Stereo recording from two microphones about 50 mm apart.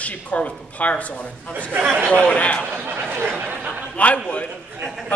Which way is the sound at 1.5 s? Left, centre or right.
Right.